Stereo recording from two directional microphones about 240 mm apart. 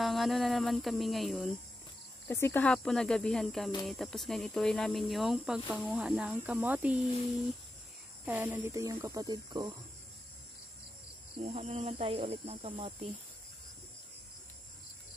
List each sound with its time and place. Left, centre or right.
0.0 s speech: centre
8.3 s speech: centre
11.3 s speech: right